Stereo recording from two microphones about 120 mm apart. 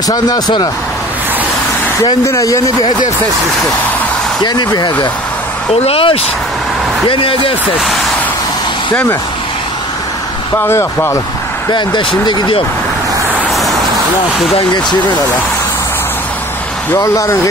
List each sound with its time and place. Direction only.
0.1 s speech: 35° left (ahead or behind)
2.2 s speech: 25° left (ahead or behind)
4.4 s speech: 35° left (ahead or behind)
5.9 s speech: 50° left (ahead or behind)
10.6 s speech: 20° left (ahead or behind)
11.7 s speech: 40° left (ahead or behind)
16.9 s speech: 25° left (ahead or behind)